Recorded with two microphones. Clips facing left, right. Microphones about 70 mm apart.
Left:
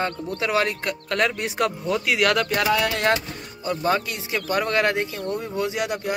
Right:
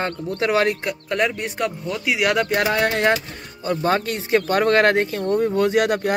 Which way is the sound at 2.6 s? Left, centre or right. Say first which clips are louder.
Right 2 dB; right.